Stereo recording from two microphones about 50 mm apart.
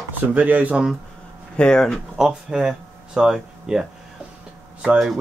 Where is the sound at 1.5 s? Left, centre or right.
Centre.